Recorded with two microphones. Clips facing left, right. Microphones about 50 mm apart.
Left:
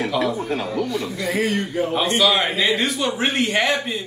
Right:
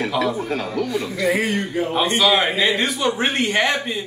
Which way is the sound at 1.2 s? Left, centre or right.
Centre.